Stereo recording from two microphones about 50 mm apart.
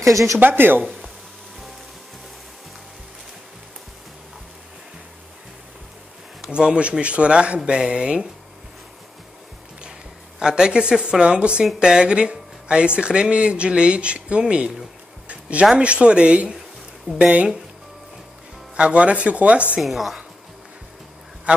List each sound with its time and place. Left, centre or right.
0.4 s speech: right
6.4 s speech: centre
10.4 s speech: centre
18.8 s speech: right
19.8 s a woman's voice: centre
21.5 s honk: right